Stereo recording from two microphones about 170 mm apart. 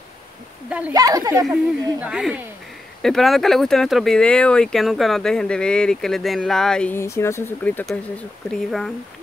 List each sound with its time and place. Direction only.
0.7 s speech: 5° right (ahead or behind)
0.9 s speech: 20° right (ahead or behind)
1.5 s speech: 5° right (ahead or behind)